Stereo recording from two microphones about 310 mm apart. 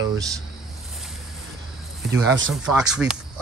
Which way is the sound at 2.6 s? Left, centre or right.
Centre.